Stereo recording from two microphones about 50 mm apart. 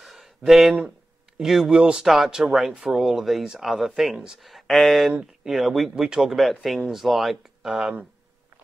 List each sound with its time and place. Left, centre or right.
0.0 s a sound: centre
1.4 s speech: centre
1.7 s speech: centre
2.0 s speech: centre
5.9 s speech: centre
6.3 s speech: centre